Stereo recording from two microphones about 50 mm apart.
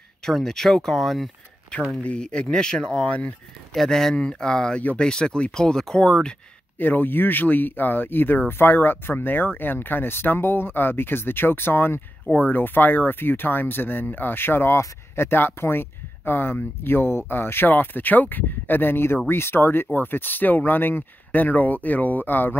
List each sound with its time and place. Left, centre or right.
0.2 s speech: centre
1.7 s speech: centre
6.8 s speech: left
12.3 s speech: left